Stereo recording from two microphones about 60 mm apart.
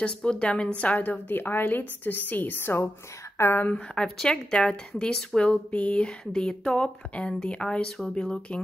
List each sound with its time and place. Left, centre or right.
0.0 s a woman's voice: centre; by 3.6 s left
3.7 s speech: centre